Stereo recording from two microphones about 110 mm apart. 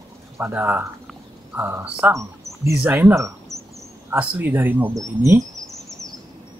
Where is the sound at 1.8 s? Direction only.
10° right (ahead or behind).